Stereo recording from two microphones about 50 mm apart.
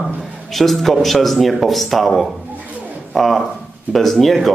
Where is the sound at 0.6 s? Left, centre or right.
Centre.